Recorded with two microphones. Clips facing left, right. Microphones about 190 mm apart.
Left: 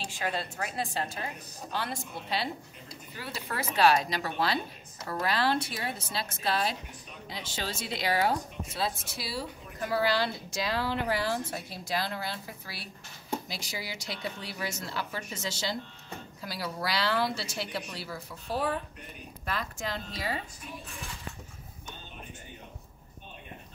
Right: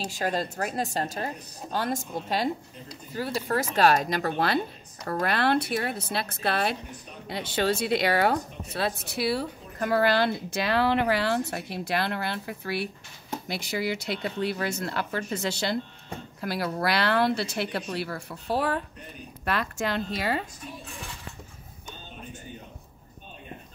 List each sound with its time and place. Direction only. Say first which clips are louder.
0.0 s a woman's voice: right 5 dB; 40° right (ahead or behind); by 20.4 s 70° right (ahead or behind)